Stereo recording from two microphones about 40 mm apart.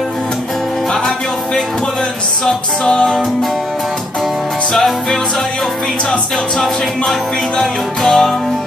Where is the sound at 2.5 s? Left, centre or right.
Centre.